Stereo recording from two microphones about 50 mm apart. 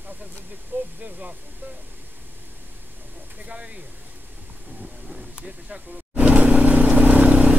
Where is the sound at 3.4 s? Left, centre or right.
Right.